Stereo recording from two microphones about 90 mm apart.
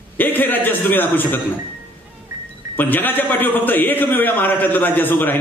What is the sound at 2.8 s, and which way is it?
A man's voice, 20° left (ahead or behind).